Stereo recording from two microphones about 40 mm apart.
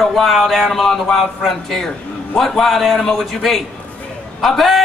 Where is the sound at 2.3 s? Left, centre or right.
Centre.